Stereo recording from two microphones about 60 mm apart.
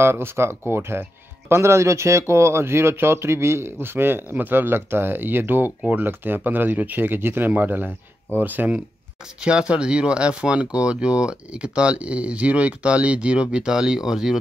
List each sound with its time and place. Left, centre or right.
0.0 s speech: right
9.4 s speech: centre